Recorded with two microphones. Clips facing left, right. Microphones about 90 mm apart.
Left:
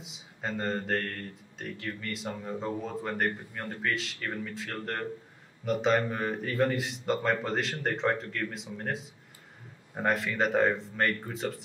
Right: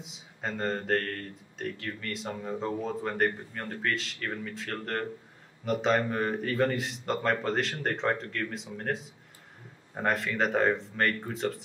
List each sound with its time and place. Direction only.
0.0 s speech: centre (ahead or behind)